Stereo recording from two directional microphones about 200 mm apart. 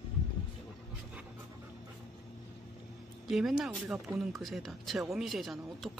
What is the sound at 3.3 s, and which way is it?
Speech, centre (ahead or behind).